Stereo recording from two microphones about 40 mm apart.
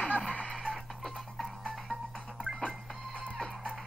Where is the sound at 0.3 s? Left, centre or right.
Left.